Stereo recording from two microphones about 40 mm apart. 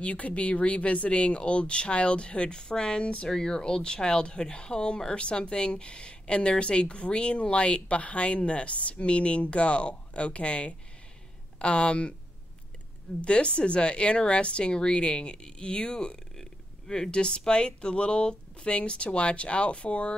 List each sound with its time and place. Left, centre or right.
0.0 s speech: left
13.2 s speech: left
16.3 s speech: centre; by 20.2 s left